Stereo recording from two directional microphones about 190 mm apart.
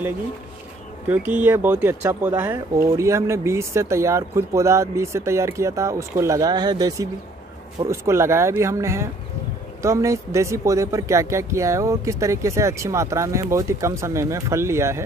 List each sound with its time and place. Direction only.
1.0 s speech: 10° right (ahead or behind)